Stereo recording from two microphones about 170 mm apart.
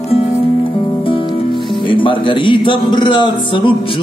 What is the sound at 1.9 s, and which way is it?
A man's voice, 30° left (ahead or behind).